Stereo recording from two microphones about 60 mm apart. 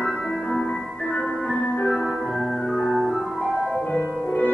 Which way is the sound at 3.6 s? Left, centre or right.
Centre.